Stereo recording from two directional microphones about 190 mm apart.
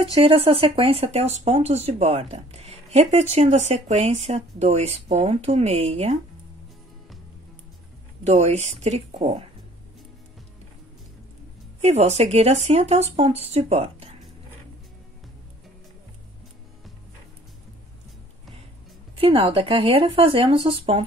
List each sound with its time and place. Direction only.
0.0 s speech: 30° right (ahead or behind)
8.2 s speech: 35° right (ahead or behind)
11.8 s speech: 35° right (ahead or behind)
19.1 s speech: 30° right (ahead or behind)